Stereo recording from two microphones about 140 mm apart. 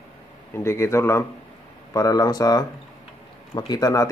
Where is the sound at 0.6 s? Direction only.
20° left (ahead or behind).